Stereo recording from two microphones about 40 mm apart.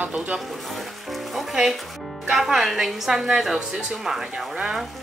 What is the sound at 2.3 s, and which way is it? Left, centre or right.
Speech, centre.